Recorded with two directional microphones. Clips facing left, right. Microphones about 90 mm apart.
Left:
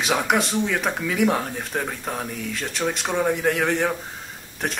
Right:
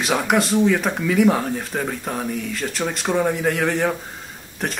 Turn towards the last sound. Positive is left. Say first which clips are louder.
# right 1 dB
turn(degrees=0)  # may be behind; listen again after turning